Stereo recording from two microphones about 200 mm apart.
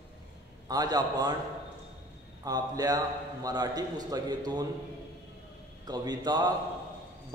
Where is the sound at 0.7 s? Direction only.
20° right (ahead or behind).